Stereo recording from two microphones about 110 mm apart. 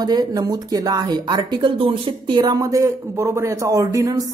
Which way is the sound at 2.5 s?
30° right (ahead or behind).